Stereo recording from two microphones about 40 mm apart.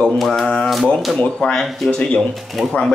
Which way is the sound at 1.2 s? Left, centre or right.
Left.